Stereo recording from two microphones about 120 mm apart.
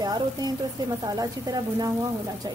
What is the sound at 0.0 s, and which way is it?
A woman's voice, 35° right (ahead or behind).